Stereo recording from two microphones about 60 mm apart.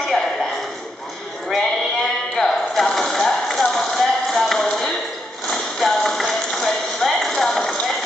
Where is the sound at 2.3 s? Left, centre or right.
Centre.